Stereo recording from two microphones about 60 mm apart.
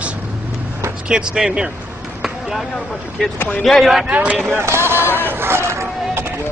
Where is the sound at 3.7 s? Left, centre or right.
Centre.